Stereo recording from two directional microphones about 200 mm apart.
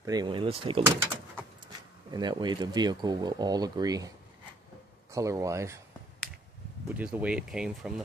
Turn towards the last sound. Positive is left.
turn(degrees=-5)  # may be behind; listen again after turning